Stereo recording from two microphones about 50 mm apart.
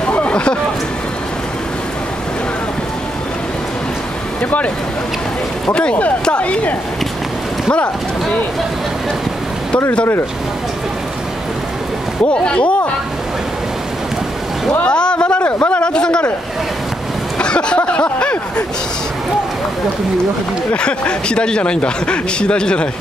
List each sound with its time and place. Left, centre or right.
0.0 s a sound: left
5.7 s speech: left
12.4 s speech: left
14.9 s speech: centre
17.4 s a sound: centre
20.7 s speech: left